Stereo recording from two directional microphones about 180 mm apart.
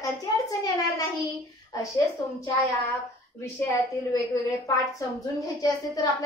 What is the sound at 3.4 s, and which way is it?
A woman's voice, 20° left (ahead or behind).